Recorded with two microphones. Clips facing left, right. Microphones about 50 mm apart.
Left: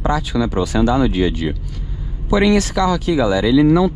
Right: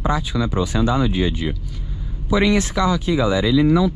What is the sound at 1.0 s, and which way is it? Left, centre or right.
Speech, left.